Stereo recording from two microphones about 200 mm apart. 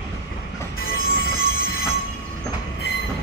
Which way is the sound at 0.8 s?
50° left (ahead or behind).